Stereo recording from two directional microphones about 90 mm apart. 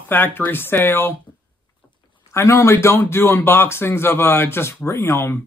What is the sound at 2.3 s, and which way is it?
Speech, 30° left (ahead or behind).